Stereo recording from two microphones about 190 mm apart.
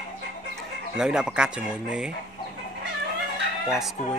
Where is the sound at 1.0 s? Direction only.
5° right (ahead or behind).